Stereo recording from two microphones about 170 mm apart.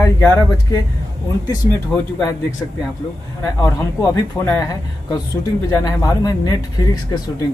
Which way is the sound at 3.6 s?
15° left (ahead or behind).